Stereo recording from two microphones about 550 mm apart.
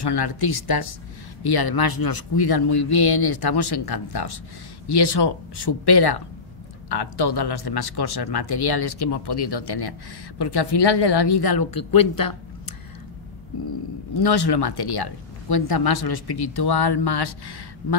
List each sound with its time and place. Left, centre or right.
0.0 s a man's voice: left
14.1 s speech: left